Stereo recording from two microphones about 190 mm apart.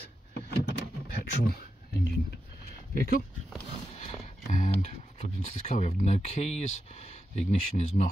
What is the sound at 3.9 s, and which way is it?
Speech, 35° left (ahead or behind).